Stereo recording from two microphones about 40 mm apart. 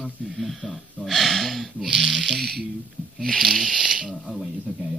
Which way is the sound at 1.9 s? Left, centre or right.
Centre.